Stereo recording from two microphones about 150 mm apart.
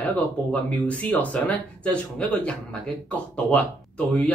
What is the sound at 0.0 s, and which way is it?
Speech, 10° left (ahead or behind).